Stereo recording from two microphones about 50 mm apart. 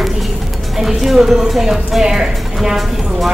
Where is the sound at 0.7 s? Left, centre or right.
Centre.